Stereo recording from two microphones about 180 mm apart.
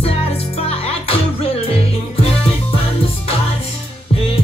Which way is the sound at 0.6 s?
35° left (ahead or behind).